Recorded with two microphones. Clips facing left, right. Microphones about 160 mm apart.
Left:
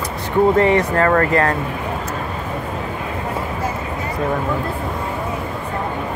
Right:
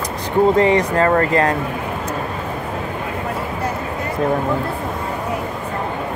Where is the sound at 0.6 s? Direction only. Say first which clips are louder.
Even; 20° right (ahead or behind).